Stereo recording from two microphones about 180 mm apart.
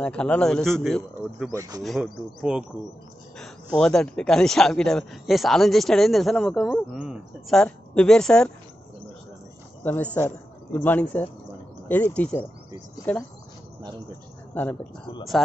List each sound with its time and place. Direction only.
0.0 s speech: 5° left (ahead or behind)
1.5 s speech: 20° right (ahead or behind)
1.8 s speech: centre (ahead or behind)
9.8 s speech: 10° left (ahead or behind)
14.5 s speech: 10° left (ahead or behind)